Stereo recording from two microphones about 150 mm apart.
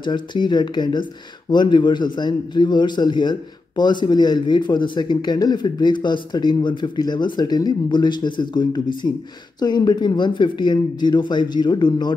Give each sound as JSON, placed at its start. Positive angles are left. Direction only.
{"t": 0.0, "sound": "a man's voice", "side_deg": 30}